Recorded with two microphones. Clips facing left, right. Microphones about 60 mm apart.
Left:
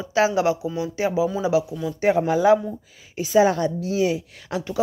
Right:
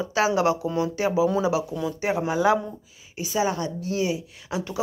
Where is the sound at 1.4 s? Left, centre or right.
Right.